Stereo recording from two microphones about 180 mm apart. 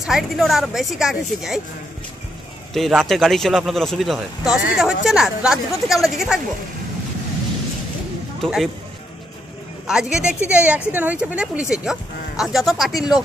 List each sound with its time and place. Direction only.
0.0 s speech: centre (ahead or behind)
2.7 s speech: centre (ahead or behind)
8.4 s speech: centre (ahead or behind)
9.8 s speech: 5° right (ahead or behind)